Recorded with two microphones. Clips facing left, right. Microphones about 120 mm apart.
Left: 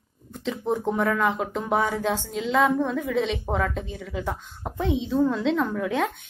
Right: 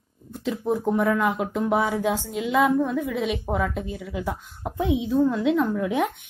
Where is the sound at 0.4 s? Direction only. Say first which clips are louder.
Right 1 dB; 5° right (ahead or behind).